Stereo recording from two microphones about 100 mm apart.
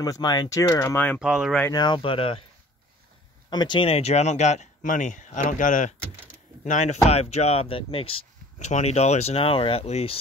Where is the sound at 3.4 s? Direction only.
45° left (ahead or behind).